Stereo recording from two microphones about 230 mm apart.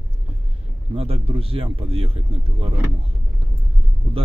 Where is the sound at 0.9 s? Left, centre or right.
Right.